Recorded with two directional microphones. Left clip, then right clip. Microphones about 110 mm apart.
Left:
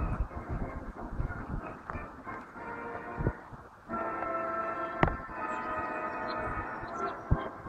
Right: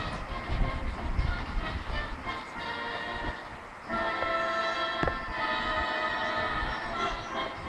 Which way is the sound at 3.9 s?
45° right (ahead or behind).